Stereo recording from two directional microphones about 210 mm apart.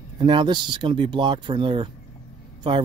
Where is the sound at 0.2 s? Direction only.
20° right (ahead or behind).